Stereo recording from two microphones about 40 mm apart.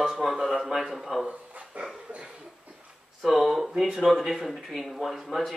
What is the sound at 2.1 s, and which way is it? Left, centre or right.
Cough, right.